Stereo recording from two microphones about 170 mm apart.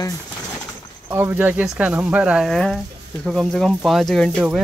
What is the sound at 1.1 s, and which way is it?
Speech, 10° right (ahead or behind).